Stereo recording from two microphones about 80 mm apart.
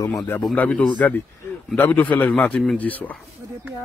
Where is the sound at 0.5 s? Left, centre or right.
Centre.